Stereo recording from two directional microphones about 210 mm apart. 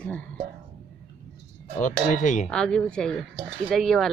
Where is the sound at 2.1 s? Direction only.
35° left (ahead or behind).